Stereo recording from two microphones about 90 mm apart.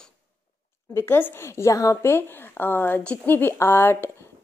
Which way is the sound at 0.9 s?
25° left (ahead or behind).